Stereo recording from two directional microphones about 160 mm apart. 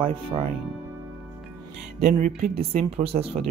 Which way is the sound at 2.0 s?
45° right (ahead or behind).